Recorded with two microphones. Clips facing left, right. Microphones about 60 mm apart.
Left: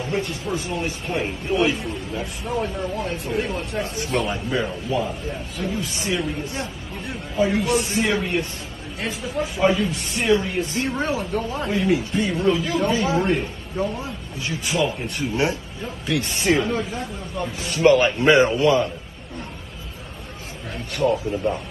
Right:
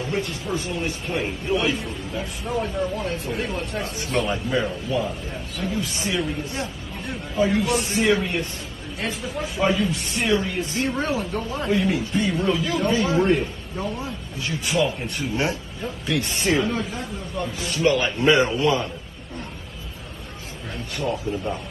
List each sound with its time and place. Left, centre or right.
0.0 s a man's voice: centre
17.7 s a man's voice: left
18.5 s a man's voice: centre